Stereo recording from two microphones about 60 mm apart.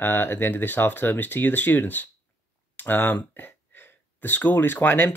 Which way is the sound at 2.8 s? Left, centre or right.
Left.